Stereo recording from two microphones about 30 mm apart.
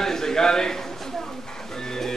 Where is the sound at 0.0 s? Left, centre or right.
Centre.